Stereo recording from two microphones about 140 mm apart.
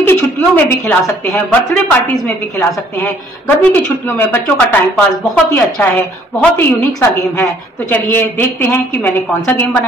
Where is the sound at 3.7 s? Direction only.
15° left (ahead or behind).